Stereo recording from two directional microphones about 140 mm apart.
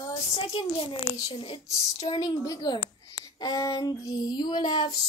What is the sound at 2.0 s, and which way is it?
Child singing, 35° left (ahead or behind).